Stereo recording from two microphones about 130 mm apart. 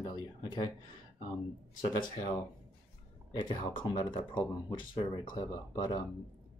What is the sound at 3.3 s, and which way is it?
Speech, 30° left (ahead or behind).